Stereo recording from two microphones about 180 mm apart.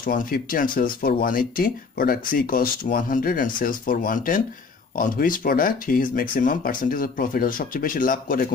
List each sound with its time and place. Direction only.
0.0 s speech: 50° left (ahead or behind)